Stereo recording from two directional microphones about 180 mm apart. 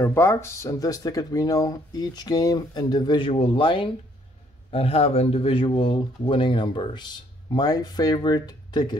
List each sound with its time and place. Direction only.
0.0 s speech: 15° left (ahead or behind)